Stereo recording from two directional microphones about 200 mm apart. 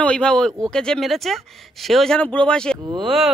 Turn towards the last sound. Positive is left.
turn(degrees=-20)  # may be behind; listen again after turning